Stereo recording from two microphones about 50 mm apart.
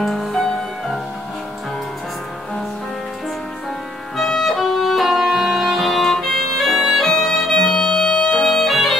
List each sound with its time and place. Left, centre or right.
0.0 s music: centre
4.2 s music: centre; by 8.5 s left
8.5 s music: centre